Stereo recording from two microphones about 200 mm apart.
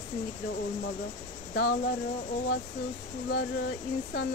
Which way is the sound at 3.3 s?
50° left (ahead or behind).